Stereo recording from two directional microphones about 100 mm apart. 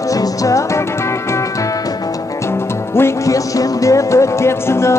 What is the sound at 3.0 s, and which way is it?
Music, 35° left (ahead or behind).